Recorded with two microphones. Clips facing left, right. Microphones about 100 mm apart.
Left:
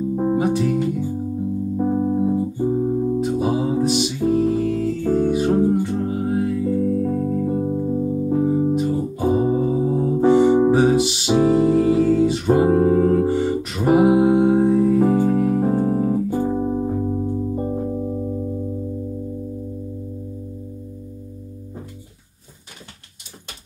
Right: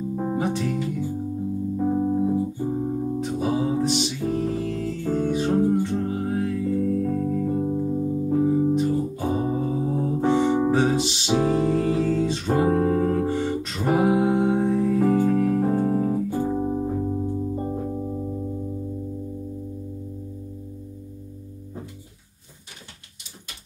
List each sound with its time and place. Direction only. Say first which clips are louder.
0.1 s music: left 6 dB; 15° left (ahead or behind)
1.8 s music: left 2 dB; 20° left (ahead or behind)
8.7 s music: left 2 dB; 5° left (ahead or behind)
9.4 s music: left 6 dB; 15° left (ahead or behind)